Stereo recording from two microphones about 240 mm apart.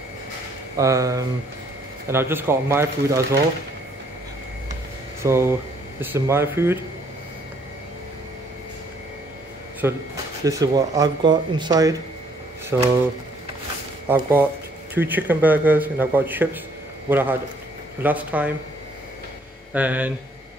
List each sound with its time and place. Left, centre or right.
0.7 s speech: centre
5.2 s speech: centre
9.8 s speech: centre
14.0 s speech: centre
19.7 s speech: centre